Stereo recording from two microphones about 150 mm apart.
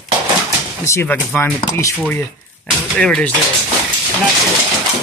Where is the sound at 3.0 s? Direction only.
10° left (ahead or behind).